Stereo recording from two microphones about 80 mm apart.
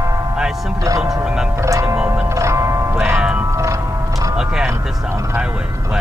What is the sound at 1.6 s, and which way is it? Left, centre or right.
Music, right.